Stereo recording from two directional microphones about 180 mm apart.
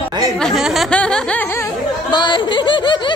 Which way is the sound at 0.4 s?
Centre (ahead or behind).